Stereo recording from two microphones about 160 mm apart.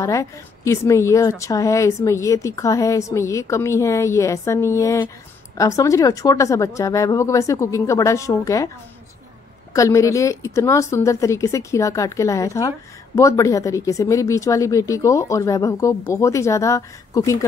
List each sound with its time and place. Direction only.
0.0 s a woman's voice: 20° left (ahead or behind)
9.8 s a woman's voice: 20° left (ahead or behind)